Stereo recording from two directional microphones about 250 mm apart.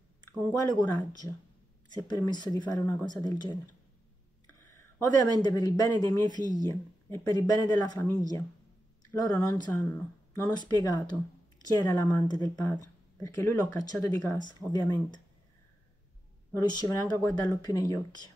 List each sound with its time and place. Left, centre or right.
0.5 s speech: centre
4.9 s speech: centre
16.5 s speech: centre